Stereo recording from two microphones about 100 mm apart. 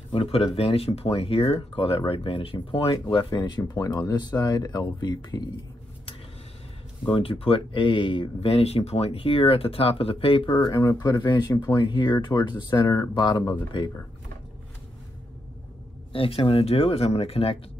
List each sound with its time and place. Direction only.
0.1 s speech: 75° left (ahead or behind); by 5.4 s 45° left (ahead or behind)
7.1 s speech: 65° left (ahead or behind)
11.0 s speech: 45° left (ahead or behind)
12.8 s speech: 30° left (ahead or behind)
13.1 s speech: 50° left (ahead or behind)
16.1 s speech: 65° left (ahead or behind)